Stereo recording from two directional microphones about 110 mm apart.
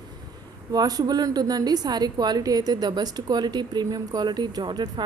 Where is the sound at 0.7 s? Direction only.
35° right (ahead or behind).